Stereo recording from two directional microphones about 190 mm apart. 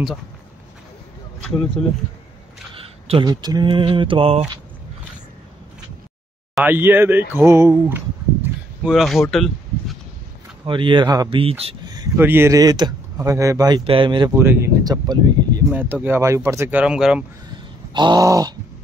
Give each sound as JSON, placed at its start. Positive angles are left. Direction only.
{"t": 2.7, "sound": "speech", "side_deg": -30}
{"t": 6.5, "sound": "speech", "side_deg": -10}
{"t": 8.8, "sound": "speech", "side_deg": 0}
{"t": 10.6, "sound": "speech", "side_deg": -25}
{"t": 11.8, "sound": "speech", "side_deg": -20}
{"t": 14.3, "sound": "speech", "side_deg": -10}
{"t": 15.7, "sound": "speech", "side_deg": -10}
{"t": 17.9, "sound": "speech", "side_deg": -20}